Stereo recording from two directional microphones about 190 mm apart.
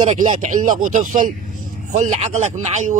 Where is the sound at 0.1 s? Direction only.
40° right (ahead or behind).